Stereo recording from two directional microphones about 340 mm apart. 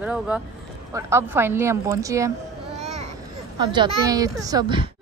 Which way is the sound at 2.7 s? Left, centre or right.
Centre.